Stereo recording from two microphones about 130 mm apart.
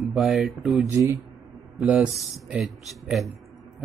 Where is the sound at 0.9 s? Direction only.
25° right (ahead or behind).